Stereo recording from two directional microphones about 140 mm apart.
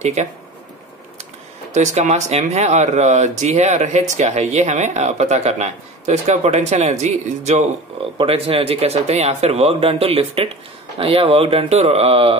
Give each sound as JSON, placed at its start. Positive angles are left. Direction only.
{"t": 0.0, "sound": "speech", "side_deg": -55}
{"t": 1.7, "sound": "speech", "side_deg": -55}
{"t": 8.2, "sound": "speech", "side_deg": -40}